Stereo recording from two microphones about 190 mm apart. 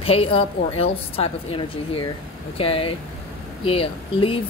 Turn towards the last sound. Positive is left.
turn(degrees=30)  # may be behind; listen again after turning